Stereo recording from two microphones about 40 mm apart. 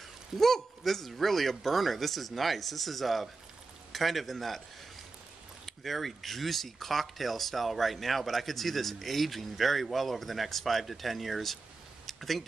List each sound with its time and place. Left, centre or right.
0.4 s speech: centre
5.7 s speech: centre
12.1 s a sound: centre